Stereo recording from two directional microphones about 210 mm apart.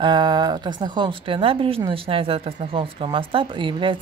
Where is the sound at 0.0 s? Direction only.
20° right (ahead or behind).